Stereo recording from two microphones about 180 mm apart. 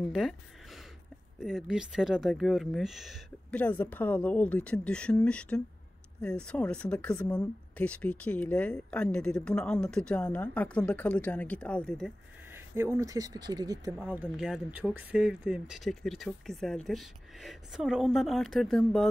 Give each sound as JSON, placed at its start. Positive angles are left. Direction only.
{"t": 0.1, "sound": "speech", "side_deg": 0}
{"t": 3.6, "sound": "speech", "side_deg": 10}
{"t": 12.5, "sound": "speech", "side_deg": -15}
{"t": 14.0, "sound": "speech", "side_deg": -10}